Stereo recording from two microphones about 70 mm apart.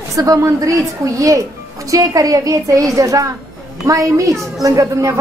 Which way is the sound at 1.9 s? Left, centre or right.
Right.